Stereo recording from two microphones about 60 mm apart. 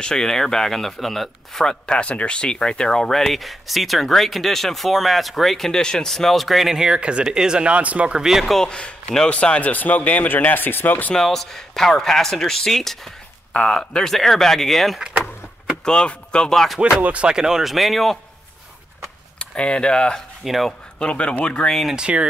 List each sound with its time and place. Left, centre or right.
0.0 s speech: centre; by 8.2 s right
8.2 s speech: centre
8.5 s speech: centre; by 11.1 s left
11.1 s speech: centre
15.8 s speech: centre
16.9 s speech: right; by 18.2 s centre
19.3 s speech: centre
20.4 s speech: centre
21.0 s speech: centre
21.6 s speech: centre
21.9 s speech: centre